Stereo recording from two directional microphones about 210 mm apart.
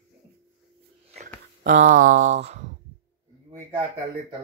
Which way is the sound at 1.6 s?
35° right (ahead or behind).